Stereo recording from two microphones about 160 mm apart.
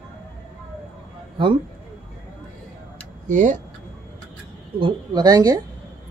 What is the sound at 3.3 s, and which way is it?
Speech, 50° right (ahead or behind).